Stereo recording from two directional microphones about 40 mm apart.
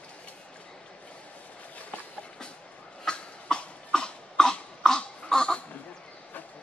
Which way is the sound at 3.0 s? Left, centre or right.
Left.